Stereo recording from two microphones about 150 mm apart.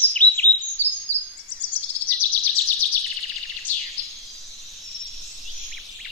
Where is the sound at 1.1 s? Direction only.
50° left (ahead or behind).